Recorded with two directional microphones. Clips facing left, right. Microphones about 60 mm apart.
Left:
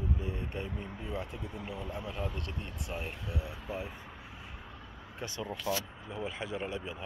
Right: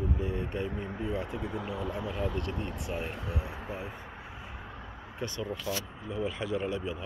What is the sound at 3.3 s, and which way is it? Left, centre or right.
Speech, right.